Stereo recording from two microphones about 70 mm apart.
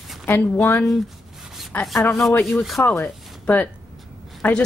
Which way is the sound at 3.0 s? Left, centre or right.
Left.